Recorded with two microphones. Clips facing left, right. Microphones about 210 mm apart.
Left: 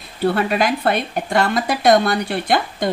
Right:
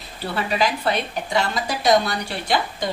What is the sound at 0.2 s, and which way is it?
Speech, 55° left (ahead or behind).